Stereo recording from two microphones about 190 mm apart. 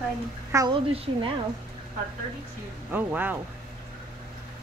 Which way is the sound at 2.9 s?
10° right (ahead or behind).